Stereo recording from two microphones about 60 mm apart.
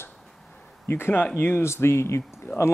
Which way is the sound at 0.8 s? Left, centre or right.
Left.